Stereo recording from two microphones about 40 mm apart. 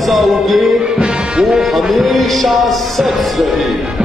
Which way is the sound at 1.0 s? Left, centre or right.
Right.